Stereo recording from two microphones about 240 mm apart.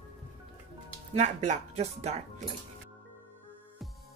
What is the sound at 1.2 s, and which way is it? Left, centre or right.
Speech, right.